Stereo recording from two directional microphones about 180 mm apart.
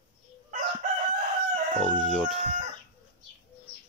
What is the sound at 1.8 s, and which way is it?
Speech, centre (ahead or behind).